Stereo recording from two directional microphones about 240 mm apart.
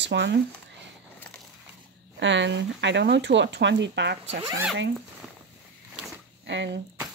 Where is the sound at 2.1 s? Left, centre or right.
Right.